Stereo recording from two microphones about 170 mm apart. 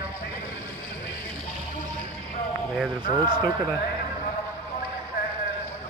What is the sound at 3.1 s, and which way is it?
Speech, 25° right (ahead or behind).